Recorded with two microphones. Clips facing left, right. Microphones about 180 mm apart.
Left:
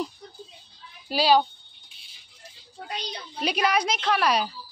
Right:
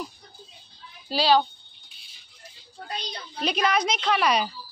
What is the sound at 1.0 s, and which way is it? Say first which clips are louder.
Speech: left 1 dB; 10° left (ahead or behind).